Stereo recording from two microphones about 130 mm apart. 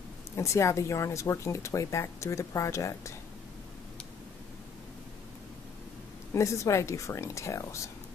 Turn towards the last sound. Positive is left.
turn(degrees=25)  # may be behind; listen again after turning